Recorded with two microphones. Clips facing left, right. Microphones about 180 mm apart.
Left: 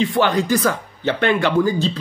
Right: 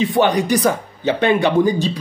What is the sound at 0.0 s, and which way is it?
Speech, 20° right (ahead or behind).